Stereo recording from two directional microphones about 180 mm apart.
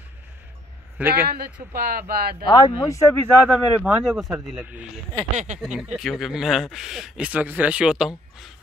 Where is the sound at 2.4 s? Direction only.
25° left (ahead or behind).